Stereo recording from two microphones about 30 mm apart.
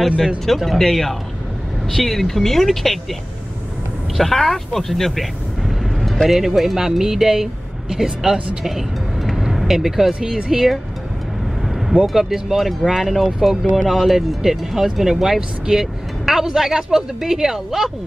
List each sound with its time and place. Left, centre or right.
0.5 s speech: centre
4.2 s speech: centre
5.2 s vehicle: centre
6.2 s speech: centre
9.2 s vehicle: centre
10.2 s speech: centre
12.2 s speech: centre